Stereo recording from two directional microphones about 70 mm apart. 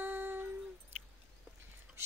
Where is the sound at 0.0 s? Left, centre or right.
Right.